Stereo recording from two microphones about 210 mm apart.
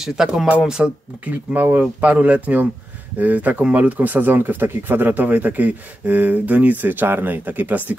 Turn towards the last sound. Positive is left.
turn(degrees=-10)  # may be behind; listen again after turning